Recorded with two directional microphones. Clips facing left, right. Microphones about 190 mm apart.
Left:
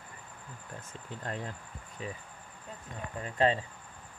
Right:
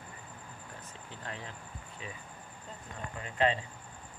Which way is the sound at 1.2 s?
50° left (ahead or behind).